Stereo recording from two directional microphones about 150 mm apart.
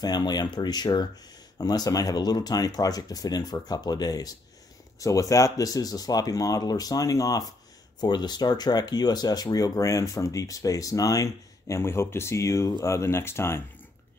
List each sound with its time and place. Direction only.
0.0 s speech: 25° left (ahead or behind)